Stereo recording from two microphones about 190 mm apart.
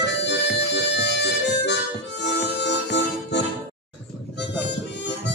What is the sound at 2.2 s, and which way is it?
Music, 65° left (ahead or behind).